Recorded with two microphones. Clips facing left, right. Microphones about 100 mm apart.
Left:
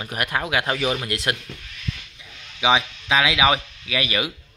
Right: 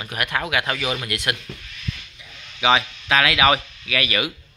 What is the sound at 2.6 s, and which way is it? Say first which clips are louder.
Speech: right 1 dB; 15° left (ahead or behind).